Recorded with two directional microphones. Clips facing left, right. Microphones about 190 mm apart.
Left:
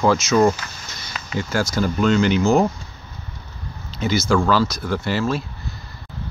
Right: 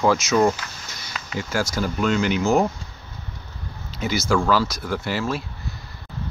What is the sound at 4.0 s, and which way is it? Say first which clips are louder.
Speech: left 3 dB; 10° right (ahead or behind).